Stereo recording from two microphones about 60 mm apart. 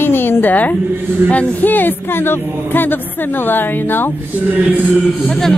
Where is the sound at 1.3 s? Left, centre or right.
Left.